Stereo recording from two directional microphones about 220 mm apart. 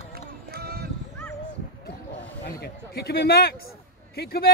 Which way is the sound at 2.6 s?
45° left (ahead or behind).